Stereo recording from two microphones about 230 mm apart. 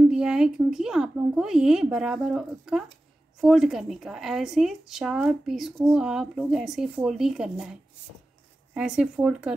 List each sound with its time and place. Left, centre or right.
0.0 s speech: centre
8.7 s speech: centre